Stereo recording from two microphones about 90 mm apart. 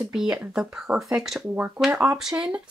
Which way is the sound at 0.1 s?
5° right (ahead or behind).